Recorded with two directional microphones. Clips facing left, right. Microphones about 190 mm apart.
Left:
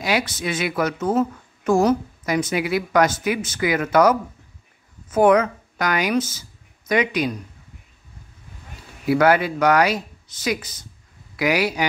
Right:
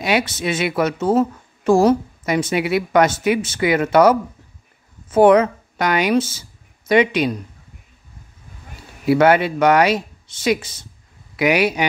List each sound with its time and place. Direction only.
0.0 s a woman's voice: 25° right (ahead or behind)
9.0 s a woman's voice: 25° right (ahead or behind)